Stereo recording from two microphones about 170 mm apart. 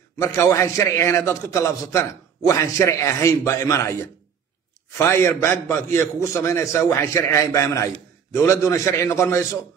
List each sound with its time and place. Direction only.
0.2 s a man's voice: 15° left (ahead or behind)